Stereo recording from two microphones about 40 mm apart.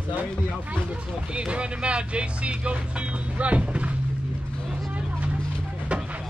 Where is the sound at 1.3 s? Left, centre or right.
Right.